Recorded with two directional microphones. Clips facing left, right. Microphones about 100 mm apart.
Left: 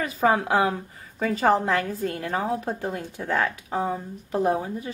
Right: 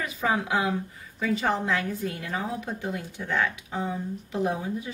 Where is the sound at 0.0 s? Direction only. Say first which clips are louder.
Left 5 dB; 40° left (ahead or behind).